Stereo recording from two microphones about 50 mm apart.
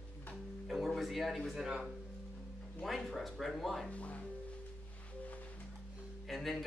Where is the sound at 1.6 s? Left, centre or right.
Centre.